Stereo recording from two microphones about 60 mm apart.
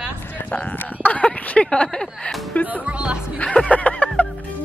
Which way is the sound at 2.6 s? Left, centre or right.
Right.